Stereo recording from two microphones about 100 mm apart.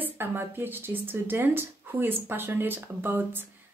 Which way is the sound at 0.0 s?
20° right (ahead or behind).